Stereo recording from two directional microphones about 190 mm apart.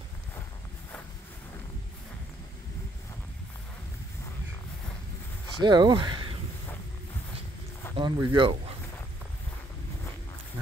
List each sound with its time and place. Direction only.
5.6 s speech: 25° right (ahead or behind)
7.9 s speech: 25° right (ahead or behind)